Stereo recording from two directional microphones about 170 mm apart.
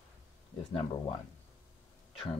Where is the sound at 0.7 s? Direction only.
30° left (ahead or behind).